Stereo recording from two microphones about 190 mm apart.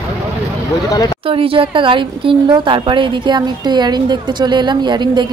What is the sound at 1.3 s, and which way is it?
A woman's voice, 30° right (ahead or behind).